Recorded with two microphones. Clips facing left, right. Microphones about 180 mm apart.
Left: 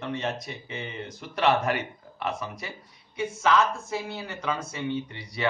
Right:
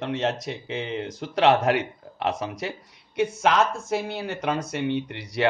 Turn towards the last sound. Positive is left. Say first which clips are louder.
# right 6 dB
turn(degrees=-75)  # may be behind; listen again after turning